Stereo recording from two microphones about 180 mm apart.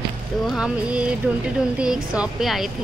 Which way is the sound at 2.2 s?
Centre (ahead or behind).